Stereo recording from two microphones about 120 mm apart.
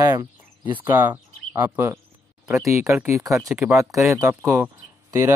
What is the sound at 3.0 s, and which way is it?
Speech, 25° right (ahead or behind).